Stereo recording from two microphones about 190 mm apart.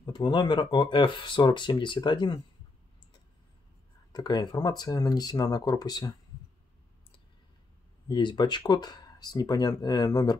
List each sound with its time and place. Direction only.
0.0 s speech: 25° left (ahead or behind)
4.1 s speech: 20° left (ahead or behind)
8.1 s speech: 25° left (ahead or behind)